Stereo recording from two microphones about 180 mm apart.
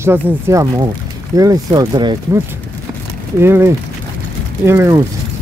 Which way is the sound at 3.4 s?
15° right (ahead or behind).